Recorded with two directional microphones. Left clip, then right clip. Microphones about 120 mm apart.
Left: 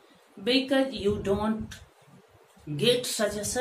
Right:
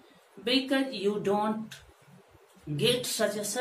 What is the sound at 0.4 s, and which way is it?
Speech, 20° left (ahead or behind).